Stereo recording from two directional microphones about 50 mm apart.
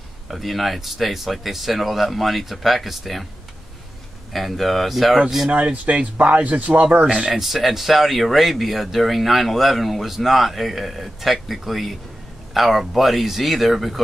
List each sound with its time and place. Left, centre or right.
0.3 s speech: centre
4.3 s speech: centre
5.5 s speech: right
7.2 s speech: centre